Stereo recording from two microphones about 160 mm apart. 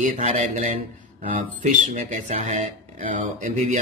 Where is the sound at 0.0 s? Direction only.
50° right (ahead or behind).